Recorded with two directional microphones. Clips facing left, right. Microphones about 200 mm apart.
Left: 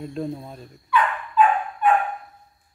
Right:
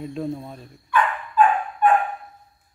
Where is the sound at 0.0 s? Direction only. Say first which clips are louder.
Right 1 dB; centre (ahead or behind).